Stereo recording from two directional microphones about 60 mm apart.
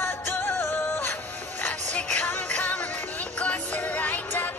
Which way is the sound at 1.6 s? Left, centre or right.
Left.